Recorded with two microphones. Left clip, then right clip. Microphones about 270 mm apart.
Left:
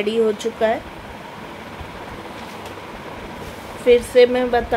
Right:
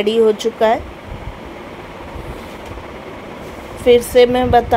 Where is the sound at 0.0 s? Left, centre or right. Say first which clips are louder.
Right 5 dB; centre.